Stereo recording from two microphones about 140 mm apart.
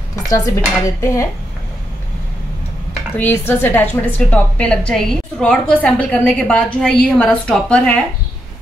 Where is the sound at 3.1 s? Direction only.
15° left (ahead or behind).